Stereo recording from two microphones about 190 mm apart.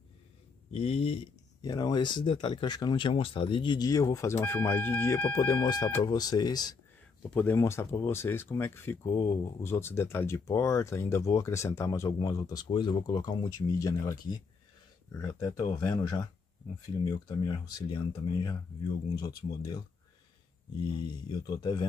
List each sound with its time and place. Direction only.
0.7 s speech: 30° left (ahead or behind)
7.2 s speech: 10° left (ahead or behind)
21.5 s speech: 25° left (ahead or behind)